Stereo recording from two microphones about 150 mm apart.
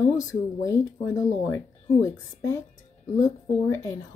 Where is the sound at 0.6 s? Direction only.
20° left (ahead or behind).